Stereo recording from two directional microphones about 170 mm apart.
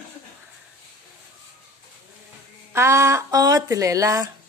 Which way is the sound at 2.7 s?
15° right (ahead or behind).